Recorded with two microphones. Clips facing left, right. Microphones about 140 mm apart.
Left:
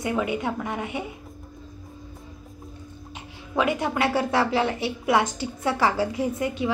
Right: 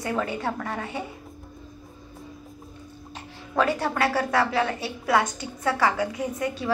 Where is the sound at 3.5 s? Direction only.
20° left (ahead or behind).